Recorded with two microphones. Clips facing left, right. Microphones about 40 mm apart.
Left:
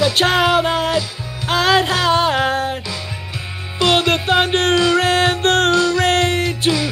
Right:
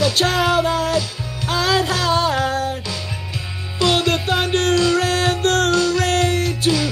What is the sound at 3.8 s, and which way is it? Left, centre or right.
Music, left.